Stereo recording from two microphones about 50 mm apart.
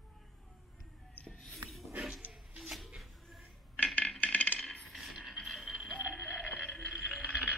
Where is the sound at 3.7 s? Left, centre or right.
Left.